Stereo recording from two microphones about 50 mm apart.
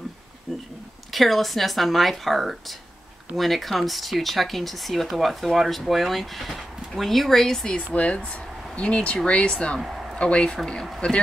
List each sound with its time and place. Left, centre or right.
1.1 s speech: centre; by 9.8 s left
9.8 s a sound: centre
10.1 s speech: left